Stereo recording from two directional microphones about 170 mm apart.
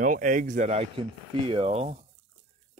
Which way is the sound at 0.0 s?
50° right (ahead or behind).